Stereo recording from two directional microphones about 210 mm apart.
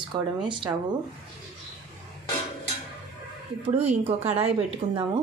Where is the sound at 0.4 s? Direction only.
20° right (ahead or behind).